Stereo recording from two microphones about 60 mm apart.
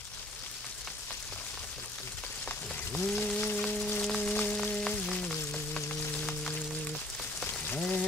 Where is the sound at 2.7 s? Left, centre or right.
Left.